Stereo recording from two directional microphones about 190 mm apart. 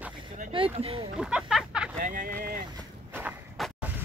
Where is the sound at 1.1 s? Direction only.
5° right (ahead or behind).